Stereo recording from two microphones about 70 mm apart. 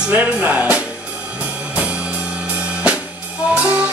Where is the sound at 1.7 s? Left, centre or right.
Centre.